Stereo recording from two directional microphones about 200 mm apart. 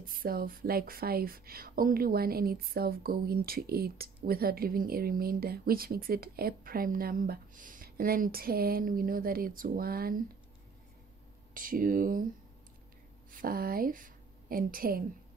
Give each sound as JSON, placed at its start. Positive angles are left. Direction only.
{"t": 0.0, "sound": "speech", "side_deg": -45}
{"t": 11.5, "sound": "speech", "side_deg": -45}
{"t": 13.3, "sound": "a woman's voice", "side_deg": -45}